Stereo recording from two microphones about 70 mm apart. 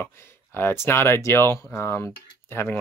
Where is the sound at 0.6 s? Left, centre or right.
Left.